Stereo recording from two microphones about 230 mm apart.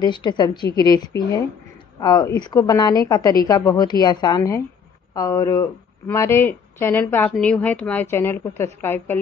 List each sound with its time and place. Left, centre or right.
0.0 s a woman's voice: centre